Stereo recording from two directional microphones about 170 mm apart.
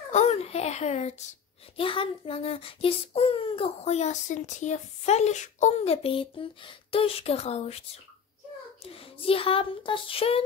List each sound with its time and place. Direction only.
0.1 s a child's voice: 40° left (ahead or behind)
8.8 s a child's voice: 35° left (ahead or behind)